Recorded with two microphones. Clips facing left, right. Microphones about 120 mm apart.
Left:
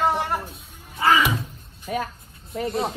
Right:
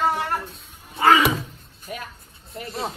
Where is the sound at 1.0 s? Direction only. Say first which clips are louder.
Right 2 dB; 60° right (ahead or behind).